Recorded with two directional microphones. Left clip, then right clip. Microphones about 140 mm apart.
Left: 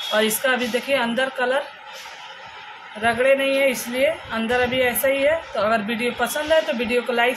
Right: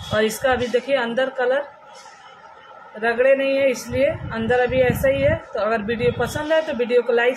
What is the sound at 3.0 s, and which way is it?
Speech, 30° right (ahead or behind).